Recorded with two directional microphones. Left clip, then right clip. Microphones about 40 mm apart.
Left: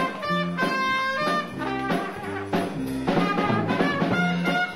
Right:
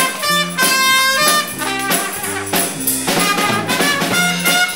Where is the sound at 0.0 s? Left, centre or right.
Left.